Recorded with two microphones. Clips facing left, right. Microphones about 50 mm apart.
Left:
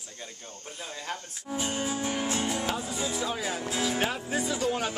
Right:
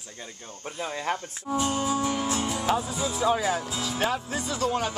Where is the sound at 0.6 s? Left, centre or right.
Right.